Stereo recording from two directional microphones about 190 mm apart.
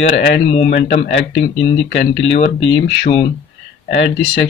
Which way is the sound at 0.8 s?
35° left (ahead or behind).